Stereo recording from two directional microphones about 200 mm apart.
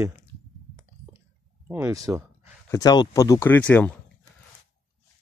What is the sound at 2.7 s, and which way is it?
Speech, 20° left (ahead or behind).